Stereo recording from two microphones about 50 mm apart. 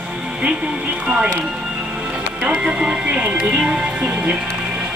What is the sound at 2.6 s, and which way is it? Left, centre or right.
Speech, centre.